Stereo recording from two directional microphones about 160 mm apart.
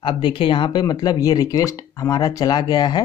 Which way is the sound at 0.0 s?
30° left (ahead or behind).